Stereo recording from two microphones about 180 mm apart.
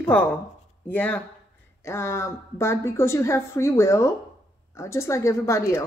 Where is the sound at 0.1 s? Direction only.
10° left (ahead or behind).